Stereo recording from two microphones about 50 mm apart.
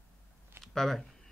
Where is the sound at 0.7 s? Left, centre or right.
Centre.